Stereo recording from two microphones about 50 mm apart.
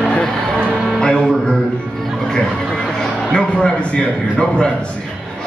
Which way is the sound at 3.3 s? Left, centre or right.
Centre.